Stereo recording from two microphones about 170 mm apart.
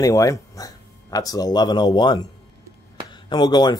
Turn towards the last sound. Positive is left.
turn(degrees=25)  # may be behind; listen again after turning